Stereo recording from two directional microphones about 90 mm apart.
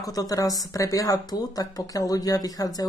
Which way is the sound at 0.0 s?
45° left (ahead or behind).